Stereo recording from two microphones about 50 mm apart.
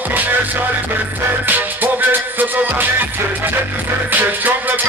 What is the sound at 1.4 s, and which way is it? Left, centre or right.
Music, right.